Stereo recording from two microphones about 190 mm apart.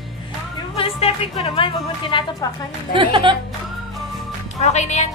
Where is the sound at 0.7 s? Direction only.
30° left (ahead or behind).